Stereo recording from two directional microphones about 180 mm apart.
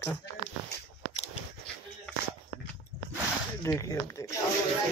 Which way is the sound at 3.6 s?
15° left (ahead or behind).